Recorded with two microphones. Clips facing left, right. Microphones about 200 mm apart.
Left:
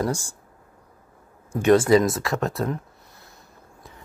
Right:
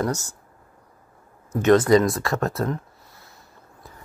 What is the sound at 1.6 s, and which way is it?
Speech, 10° left (ahead or behind).